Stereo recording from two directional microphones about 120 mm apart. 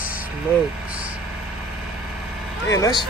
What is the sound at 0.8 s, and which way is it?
Vehicle, 10° right (ahead or behind).